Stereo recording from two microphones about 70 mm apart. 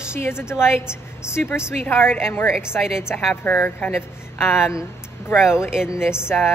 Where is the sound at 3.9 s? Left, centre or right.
Left.